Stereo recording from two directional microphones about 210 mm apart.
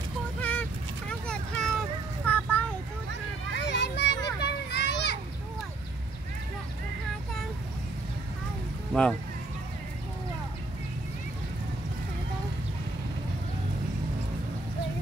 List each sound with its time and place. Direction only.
0.4 s vehicle: 5° left (ahead or behind)
3.5 s children playing: 55° left (ahead or behind)